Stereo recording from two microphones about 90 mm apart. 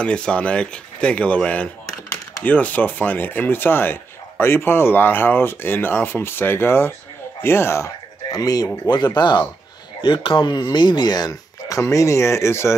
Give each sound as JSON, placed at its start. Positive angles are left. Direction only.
{"t": 0.0, "sound": "speech", "side_deg": 10}
{"t": 8.3, "sound": "speech", "side_deg": 45}
{"t": 10.0, "sound": "speech", "side_deg": 70}
{"t": 11.8, "sound": "speech", "side_deg": 35}